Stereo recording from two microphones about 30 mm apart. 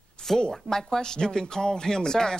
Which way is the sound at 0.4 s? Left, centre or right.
Left.